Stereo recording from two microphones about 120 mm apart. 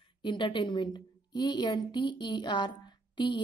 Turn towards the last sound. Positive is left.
turn(degrees=40)  # may be behind; listen again after turning